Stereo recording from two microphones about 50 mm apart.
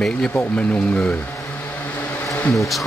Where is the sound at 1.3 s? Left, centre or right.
Left.